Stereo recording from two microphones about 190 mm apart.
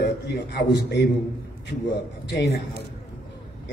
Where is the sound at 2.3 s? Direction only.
65° left (ahead or behind).